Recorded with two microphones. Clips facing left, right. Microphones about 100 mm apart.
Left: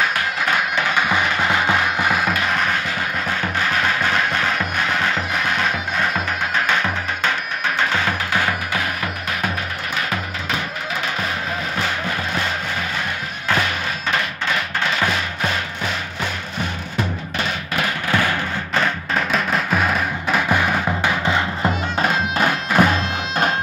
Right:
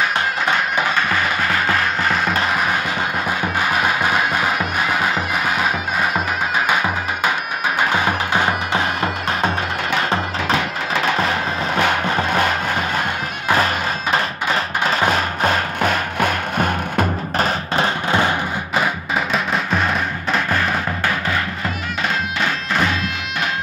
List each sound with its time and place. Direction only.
0.9 s music: 15° left (ahead or behind)
3.6 s music: 15° right (ahead or behind)
6.7 s music: 15° right (ahead or behind); by 9.5 s 30° right (ahead or behind)
14.9 s music: 40° right (ahead or behind)
18.8 s drum: 5° right (ahead or behind)
22.8 s bagpipes: 50° left (ahead or behind)